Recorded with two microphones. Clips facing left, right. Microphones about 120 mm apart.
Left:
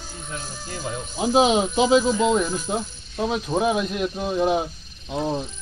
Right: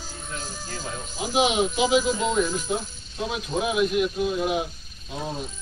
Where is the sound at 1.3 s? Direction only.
35° left (ahead or behind).